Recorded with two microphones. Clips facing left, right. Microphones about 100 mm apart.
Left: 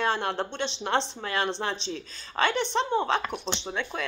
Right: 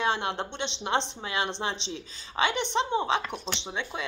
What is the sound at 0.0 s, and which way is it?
A woman's voice, 20° right (ahead or behind).